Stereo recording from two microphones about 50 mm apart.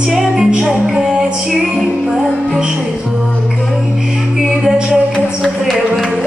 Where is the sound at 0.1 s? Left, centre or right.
Centre.